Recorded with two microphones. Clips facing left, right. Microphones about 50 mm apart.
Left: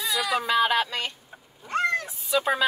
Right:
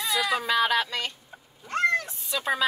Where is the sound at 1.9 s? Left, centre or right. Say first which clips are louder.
Left 2 dB; centre.